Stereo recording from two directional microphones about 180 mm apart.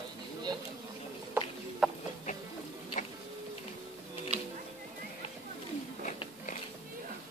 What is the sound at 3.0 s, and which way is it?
Printer, 45° left (ahead or behind).